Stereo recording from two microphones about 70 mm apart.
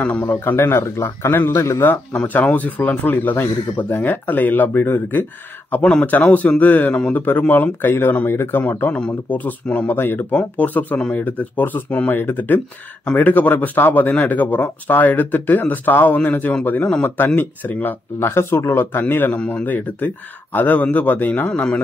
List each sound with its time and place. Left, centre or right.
0.0 s speech: left
2.1 s a man's voice: centre
5.7 s a man's voice: left